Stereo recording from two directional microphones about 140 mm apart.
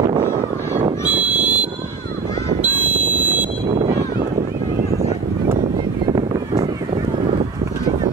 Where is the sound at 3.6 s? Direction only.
40° right (ahead or behind).